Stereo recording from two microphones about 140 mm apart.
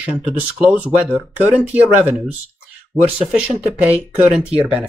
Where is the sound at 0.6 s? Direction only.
10° right (ahead or behind).